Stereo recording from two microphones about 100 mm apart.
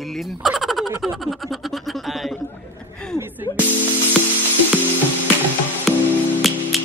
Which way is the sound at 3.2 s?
20° right (ahead or behind).